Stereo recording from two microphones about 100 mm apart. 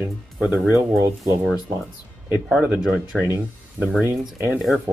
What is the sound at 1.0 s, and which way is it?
Speech, 30° right (ahead or behind).